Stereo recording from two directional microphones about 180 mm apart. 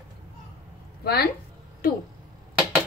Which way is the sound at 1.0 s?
60° left (ahead or behind).